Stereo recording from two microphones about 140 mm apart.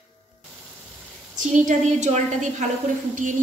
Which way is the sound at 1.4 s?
65° right (ahead or behind).